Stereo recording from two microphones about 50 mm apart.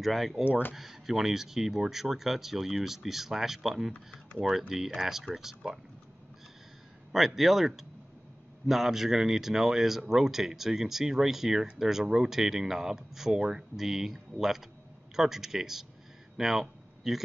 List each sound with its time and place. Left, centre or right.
0.0 s speech: centre
0.5 s speech: left
0.7 s speech: centre
7.1 s speech: centre
16.3 s a sound: centre